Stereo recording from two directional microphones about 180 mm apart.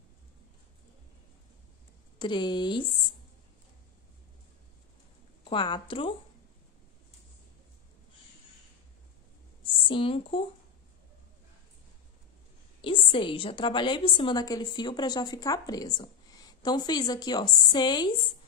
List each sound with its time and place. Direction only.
2.1 s a woman's voice: 25° left (ahead or behind)
5.4 s a woman's voice: 25° left (ahead or behind)
9.8 s a woman's voice: 30° left (ahead or behind)
12.8 s a woman's voice: 30° left (ahead or behind)